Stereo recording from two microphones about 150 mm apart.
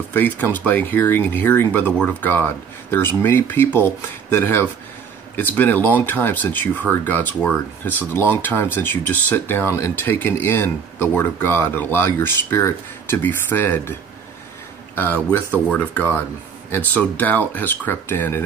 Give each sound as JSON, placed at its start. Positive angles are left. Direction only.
{"t": 0.1, "sound": "speech", "side_deg": 10}
{"t": 15.0, "sound": "speech", "side_deg": 15}